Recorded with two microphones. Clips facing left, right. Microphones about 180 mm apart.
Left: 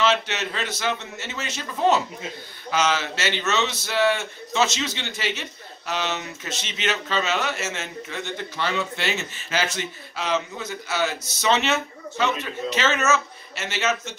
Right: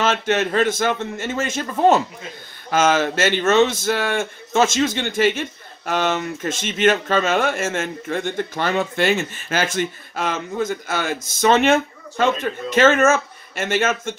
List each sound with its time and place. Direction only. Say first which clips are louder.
0.0 s a man's voice: right 4 dB; 50° right (ahead or behind)